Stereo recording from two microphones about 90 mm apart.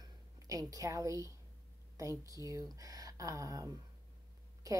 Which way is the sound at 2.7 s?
40° right (ahead or behind).